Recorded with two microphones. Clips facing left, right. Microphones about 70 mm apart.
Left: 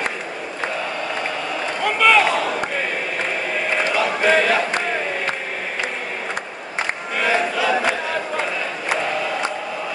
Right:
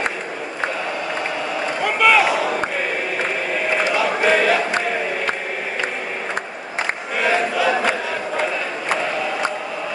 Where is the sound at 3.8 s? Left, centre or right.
Centre.